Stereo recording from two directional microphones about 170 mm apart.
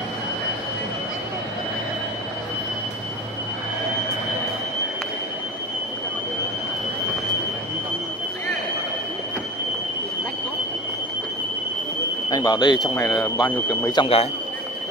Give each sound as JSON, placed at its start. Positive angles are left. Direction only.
{"t": 12.3, "sound": "speech", "side_deg": 25}